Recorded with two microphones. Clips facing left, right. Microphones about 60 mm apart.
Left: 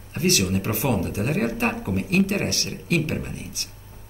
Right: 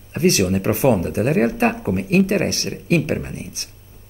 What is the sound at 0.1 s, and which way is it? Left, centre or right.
A man's voice, right.